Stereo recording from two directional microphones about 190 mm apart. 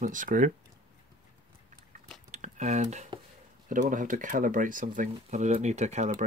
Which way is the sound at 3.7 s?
45° right (ahead or behind).